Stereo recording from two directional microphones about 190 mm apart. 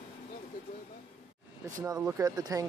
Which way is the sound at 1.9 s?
15° right (ahead or behind).